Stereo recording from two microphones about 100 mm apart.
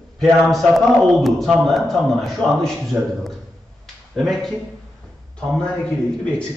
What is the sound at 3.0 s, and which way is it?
Speech, 15° right (ahead or behind).